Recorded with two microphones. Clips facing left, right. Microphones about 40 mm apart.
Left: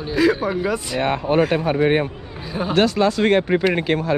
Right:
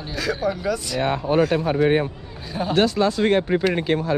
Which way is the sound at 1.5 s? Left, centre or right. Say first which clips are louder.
Left 1 dB; left.